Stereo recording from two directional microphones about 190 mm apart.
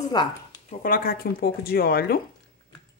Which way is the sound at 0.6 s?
45° left (ahead or behind).